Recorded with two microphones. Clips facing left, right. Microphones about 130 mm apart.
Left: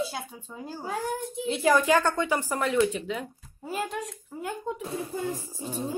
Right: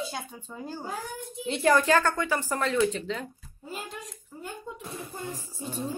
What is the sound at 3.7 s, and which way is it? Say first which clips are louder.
Speech: left 7 dB; 75° left (ahead or behind).